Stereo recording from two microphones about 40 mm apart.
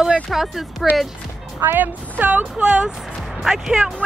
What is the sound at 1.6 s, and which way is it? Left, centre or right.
Speech, right.